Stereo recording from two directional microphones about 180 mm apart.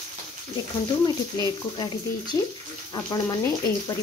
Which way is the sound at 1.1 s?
20° left (ahead or behind).